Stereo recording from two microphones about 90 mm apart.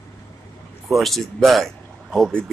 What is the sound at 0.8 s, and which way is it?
Speech, centre (ahead or behind).